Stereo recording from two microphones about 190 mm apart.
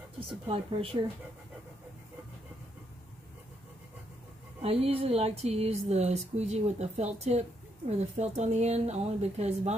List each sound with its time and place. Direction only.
0.3 s speech: 30° right (ahead or behind)
4.6 s speech: 30° right (ahead or behind)